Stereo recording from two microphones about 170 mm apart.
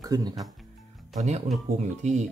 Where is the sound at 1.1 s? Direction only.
45° right (ahead or behind).